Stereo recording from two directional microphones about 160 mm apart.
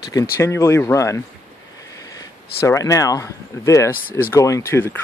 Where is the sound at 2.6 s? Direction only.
20° left (ahead or behind).